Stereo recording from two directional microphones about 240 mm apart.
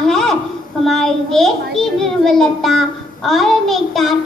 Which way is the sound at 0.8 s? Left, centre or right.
Centre.